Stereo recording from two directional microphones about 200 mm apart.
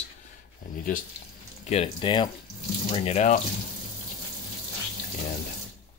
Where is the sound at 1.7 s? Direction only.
30° left (ahead or behind).